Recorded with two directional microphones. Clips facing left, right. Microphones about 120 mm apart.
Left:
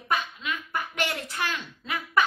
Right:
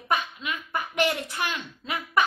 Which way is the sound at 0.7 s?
20° right (ahead or behind).